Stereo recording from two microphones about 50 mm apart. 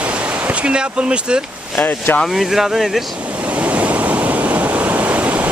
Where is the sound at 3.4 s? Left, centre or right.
Right.